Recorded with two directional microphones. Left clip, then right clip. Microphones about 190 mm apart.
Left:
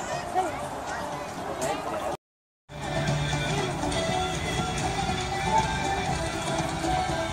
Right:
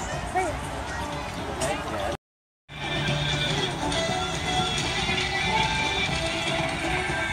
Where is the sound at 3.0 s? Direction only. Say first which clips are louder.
Right 4 dB; 55° left (ahead or behind).